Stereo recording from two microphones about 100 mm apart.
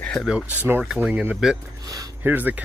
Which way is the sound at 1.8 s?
35° right (ahead or behind).